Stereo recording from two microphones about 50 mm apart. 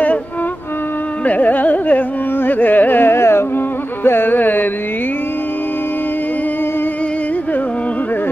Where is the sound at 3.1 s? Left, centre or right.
Left.